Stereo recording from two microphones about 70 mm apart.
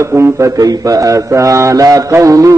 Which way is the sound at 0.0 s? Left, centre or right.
Right.